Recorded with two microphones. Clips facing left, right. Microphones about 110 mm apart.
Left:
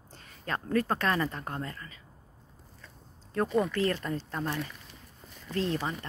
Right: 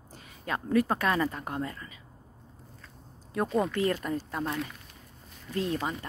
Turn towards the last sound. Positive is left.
turn(degrees=-15)  # may be behind; listen again after turning